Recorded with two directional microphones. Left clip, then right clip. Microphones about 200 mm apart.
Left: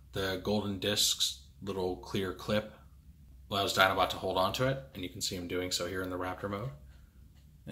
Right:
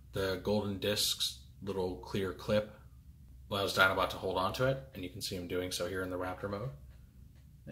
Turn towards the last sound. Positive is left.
turn(degrees=10)  # may be behind; listen again after turning